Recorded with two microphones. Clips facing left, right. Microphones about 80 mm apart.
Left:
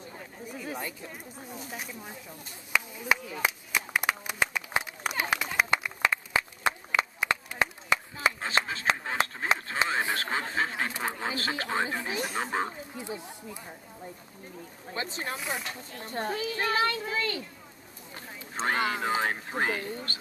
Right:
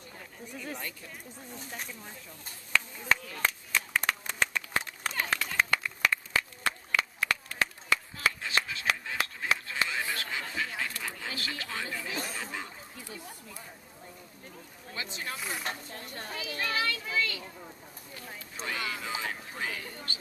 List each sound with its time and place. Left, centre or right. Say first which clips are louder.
0.2 s chatter: left 2 dB; centre
0.8 s speech: left 3 dB; centre
1.7 s speech: left 2 dB; centre
2.7 s chop: left 1 dB; centre
5.3 s run: left 2 dB; centre
8.4 s a sound: left 3 dB; left
12.3 s a sound: left 8 dB; left
12.9 s speech: left 6 dB; left
14.9 s a child's voice: left 4 dB; left
15.3 s speech: left 3 dB; centre
16.0 s a child's voice: left 8 dB; left
18.5 s speech: left 8 dB; left